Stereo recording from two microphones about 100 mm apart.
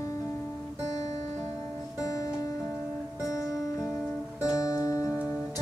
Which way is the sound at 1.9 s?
35° left (ahead or behind).